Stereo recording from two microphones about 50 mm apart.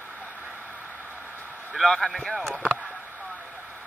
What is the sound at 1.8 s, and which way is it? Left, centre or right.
Speech, centre.